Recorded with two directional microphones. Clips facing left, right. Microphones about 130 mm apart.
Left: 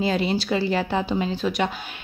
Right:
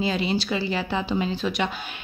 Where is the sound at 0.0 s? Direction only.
50° left (ahead or behind).